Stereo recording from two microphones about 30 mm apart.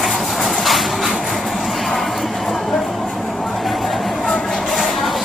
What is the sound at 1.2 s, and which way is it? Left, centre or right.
Train, centre.